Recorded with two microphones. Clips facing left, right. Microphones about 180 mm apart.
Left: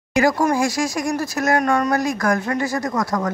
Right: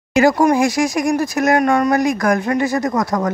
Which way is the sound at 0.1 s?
25° right (ahead or behind).